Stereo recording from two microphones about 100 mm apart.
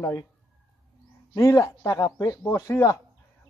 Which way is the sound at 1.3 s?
30° left (ahead or behind).